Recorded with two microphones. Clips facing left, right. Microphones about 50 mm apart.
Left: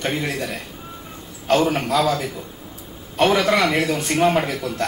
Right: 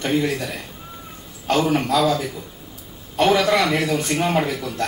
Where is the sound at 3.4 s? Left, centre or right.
Left.